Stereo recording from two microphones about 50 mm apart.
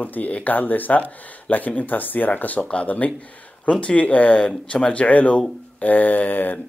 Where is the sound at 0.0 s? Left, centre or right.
Left.